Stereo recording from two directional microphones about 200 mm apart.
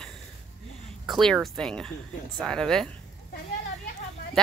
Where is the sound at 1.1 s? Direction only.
Centre (ahead or behind).